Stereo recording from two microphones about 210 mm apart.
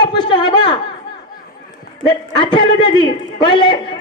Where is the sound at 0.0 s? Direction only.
20° left (ahead or behind).